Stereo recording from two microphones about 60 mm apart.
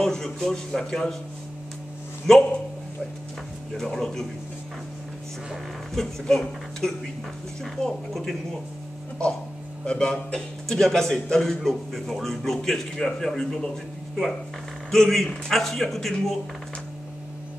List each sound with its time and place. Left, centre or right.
0.0 s a man's voice: centre
2.3 s a man's voice: centre
3.7 s a man's voice: centre
5.9 s a man's voice: centre
9.8 s a man's voice: centre
14.9 s a man's voice: centre